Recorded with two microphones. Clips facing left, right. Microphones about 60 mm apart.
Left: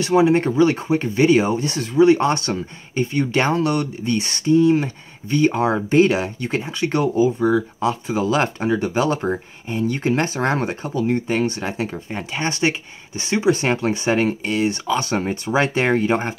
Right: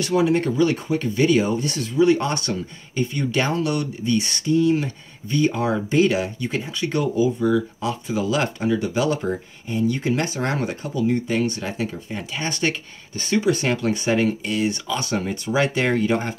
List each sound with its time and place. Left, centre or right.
0.0 s speech: left